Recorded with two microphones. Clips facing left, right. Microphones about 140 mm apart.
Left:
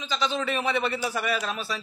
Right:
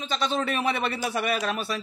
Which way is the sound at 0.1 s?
55° right (ahead or behind).